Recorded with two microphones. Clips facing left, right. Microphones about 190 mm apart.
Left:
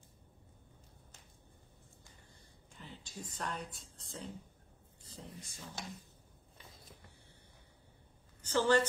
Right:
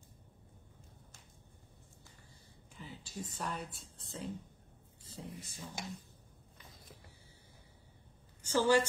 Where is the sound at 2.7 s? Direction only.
5° right (ahead or behind).